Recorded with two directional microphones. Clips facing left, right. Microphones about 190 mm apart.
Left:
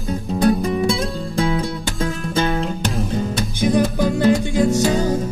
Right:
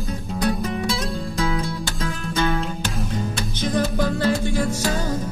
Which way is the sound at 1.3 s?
30° left (ahead or behind).